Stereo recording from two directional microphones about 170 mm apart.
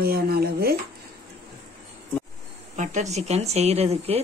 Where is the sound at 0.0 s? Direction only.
65° right (ahead or behind).